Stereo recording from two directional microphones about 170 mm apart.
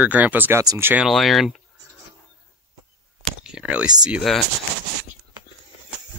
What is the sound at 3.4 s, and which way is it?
Speech, 5° right (ahead or behind).